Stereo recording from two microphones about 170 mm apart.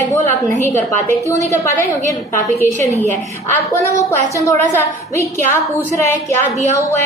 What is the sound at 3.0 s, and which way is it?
A woman's voice, 10° left (ahead or behind).